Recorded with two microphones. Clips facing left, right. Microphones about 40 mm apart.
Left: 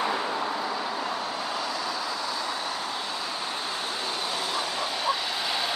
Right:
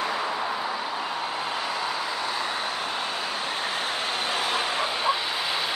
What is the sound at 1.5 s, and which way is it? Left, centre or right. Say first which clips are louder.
Vehicle: right 2 dB; right.